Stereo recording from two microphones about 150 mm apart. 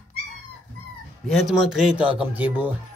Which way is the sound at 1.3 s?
Centre (ahead or behind).